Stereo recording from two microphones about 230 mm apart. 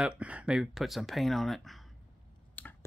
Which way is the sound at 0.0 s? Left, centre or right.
Centre.